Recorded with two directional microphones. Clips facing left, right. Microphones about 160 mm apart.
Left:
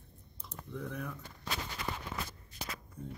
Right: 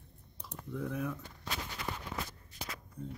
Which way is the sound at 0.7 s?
5° right (ahead or behind).